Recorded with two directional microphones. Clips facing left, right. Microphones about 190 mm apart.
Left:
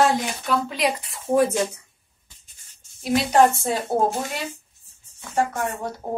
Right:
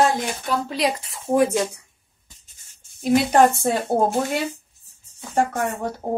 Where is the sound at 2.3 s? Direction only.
45° right (ahead or behind).